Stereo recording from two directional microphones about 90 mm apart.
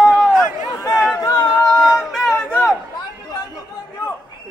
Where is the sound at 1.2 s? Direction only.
50° left (ahead or behind).